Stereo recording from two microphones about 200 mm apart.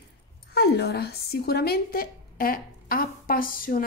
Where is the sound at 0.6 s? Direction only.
55° left (ahead or behind).